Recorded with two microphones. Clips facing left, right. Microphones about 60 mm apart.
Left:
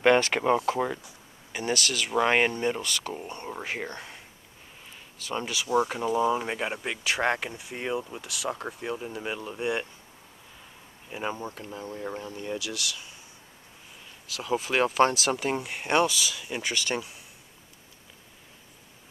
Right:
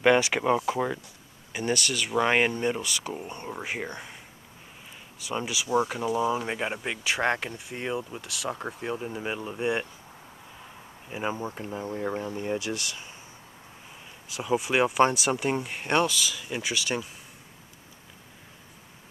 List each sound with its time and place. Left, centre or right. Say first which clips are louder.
0.0 s speech: even; centre
5.2 s speech: even; centre
11.1 s speech: right 2 dB; centre
11.3 s speech: right 3 dB; right
14.2 s speech: right 2 dB; right
14.5 s speech: right 1 dB; centre